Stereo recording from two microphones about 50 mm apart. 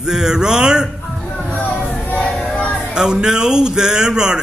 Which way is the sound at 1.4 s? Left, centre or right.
Left.